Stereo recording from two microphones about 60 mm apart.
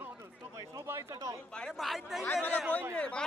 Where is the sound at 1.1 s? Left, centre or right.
Right.